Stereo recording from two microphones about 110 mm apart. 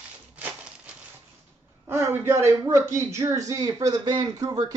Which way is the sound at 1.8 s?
20° right (ahead or behind).